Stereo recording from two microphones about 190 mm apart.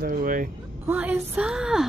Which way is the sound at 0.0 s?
45° right (ahead or behind).